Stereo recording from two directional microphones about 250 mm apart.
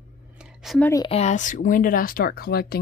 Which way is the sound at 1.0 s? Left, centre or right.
Left.